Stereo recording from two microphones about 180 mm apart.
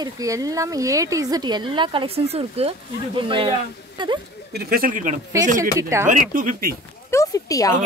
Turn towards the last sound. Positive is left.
turn(degrees=20)  # may be behind; listen again after turning